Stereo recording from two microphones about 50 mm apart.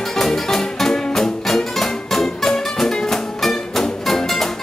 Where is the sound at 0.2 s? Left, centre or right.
Centre.